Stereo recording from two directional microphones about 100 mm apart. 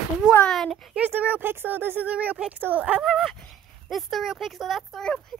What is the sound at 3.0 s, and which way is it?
A child's voice, centre (ahead or behind).